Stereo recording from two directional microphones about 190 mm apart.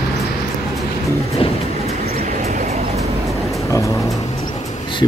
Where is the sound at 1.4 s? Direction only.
30° left (ahead or behind).